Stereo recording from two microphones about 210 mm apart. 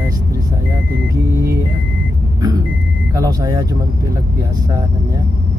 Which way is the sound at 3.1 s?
15° right (ahead or behind).